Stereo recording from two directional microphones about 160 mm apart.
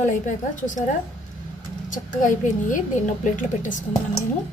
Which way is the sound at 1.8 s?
55° left (ahead or behind).